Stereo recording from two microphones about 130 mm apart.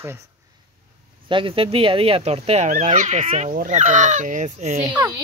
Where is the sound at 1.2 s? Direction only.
40° right (ahead or behind); by 4.9 s 65° right (ahead or behind).